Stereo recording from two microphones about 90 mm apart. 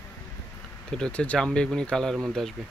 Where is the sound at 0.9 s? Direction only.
10° left (ahead or behind).